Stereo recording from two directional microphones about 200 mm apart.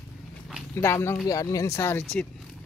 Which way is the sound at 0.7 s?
15° left (ahead or behind).